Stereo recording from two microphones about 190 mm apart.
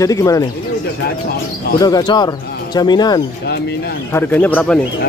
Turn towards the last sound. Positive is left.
turn(degrees=5)  # may be behind; listen again after turning